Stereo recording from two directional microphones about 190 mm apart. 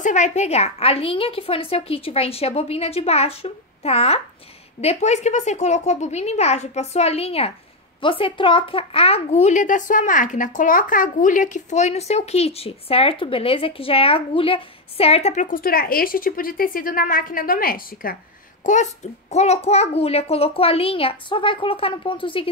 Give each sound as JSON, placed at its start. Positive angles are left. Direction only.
{"t": 0.0, "sound": "a child's voice", "side_deg": 40}